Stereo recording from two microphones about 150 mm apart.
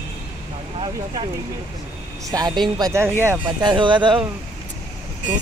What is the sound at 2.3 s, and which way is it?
Speech, 25° right (ahead or behind).